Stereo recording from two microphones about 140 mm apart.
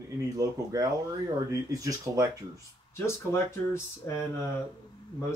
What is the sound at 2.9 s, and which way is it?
Speech, 20° left (ahead or behind).